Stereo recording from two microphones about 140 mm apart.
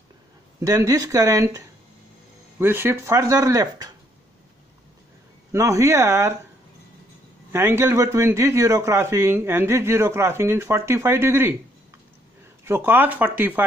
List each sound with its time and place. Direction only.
0.6 s speech: 25° right (ahead or behind)
5.5 s speech: 20° right (ahead or behind)
7.5 s speech: 15° right (ahead or behind)
12.6 s speech: 15° right (ahead or behind)